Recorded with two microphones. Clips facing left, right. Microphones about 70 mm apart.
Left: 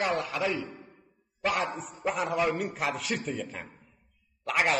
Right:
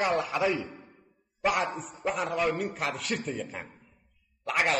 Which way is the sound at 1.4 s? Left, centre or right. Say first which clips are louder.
Right 2 dB; centre.